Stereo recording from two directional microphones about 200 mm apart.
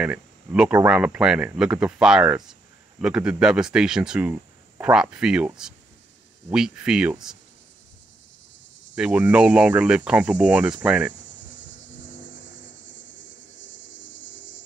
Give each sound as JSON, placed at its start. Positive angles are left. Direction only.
{"t": 0.0, "sound": "speech", "side_deg": -5}
{"t": 8.9, "sound": "speech", "side_deg": -5}
{"t": 11.1, "sound": "cricket", "side_deg": 65}